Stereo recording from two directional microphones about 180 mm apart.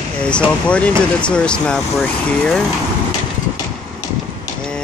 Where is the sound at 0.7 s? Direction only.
5° left (ahead or behind).